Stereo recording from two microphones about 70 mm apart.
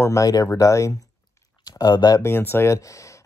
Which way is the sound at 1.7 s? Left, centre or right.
Left.